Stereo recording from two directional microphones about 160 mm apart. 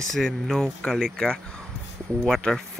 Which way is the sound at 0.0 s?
Centre (ahead or behind).